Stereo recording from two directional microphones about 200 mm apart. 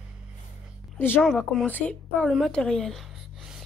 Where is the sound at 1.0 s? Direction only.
5° left (ahead or behind).